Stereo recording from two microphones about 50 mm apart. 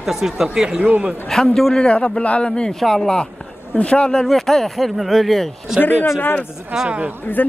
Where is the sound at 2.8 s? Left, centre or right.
Centre.